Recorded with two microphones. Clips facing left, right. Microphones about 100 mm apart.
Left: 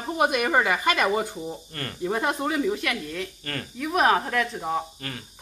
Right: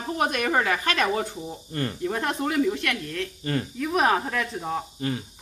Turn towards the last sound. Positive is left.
turn(degrees=-20)  # may be behind; listen again after turning